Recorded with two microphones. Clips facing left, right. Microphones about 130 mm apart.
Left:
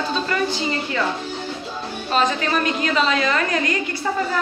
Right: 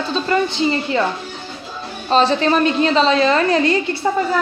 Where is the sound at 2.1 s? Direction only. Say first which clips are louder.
Right 6 dB; 30° right (ahead or behind).